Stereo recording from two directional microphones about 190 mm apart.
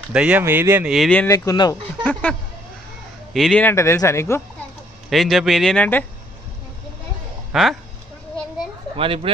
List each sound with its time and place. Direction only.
0.1 s speech: 5° right (ahead or behind)
1.2 s speech: 15° left (ahead or behind)
3.3 s speech: 5° left (ahead or behind)
5.1 s speech: centre (ahead or behind)
7.5 s speech: centre (ahead or behind)
8.9 s speech: 30° right (ahead or behind)